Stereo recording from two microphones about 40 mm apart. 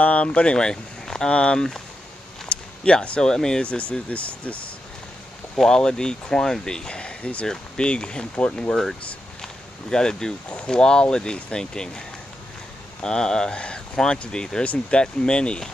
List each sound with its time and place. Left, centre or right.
0.0 s speech: left
2.5 s a sound: left
3.2 s speech: centre
4.1 s speech: left
5.6 s speech: centre
13.0 s speech: centre